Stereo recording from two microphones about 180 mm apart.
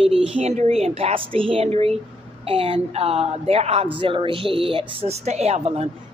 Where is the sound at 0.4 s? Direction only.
35° right (ahead or behind).